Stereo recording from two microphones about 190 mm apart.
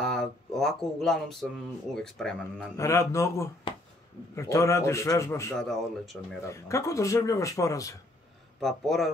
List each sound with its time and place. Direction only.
0.0 s speech: centre (ahead or behind)
2.8 s speech: 15° left (ahead or behind)
3.7 s a sound: 25° left (ahead or behind)
4.4 s speech: 15° left (ahead or behind)
5.6 s speech: centre (ahead or behind)
6.4 s speech: 15° left (ahead or behind)
8.5 s speech: centre (ahead or behind)